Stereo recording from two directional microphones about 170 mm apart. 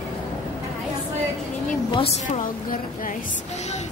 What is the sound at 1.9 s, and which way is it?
Speech, 30° left (ahead or behind).